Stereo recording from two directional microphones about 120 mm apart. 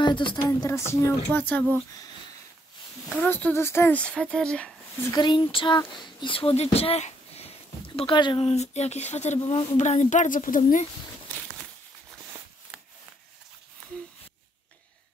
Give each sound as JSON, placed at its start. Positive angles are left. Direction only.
{"t": 0.0, "sound": "speech", "side_deg": 45}
{"t": 0.5, "sound": "speech", "side_deg": 25}
{"t": 3.3, "sound": "speech", "side_deg": 15}
{"t": 4.0, "sound": "speech", "side_deg": 10}
{"t": 5.1, "sound": "speech", "side_deg": 40}
{"t": 8.5, "sound": "speech", "side_deg": 65}